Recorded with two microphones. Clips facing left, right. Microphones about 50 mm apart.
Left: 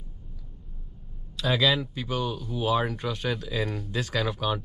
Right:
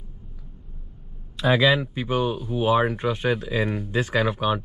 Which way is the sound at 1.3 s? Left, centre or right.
Right.